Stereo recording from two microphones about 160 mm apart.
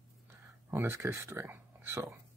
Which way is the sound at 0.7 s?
15° right (ahead or behind).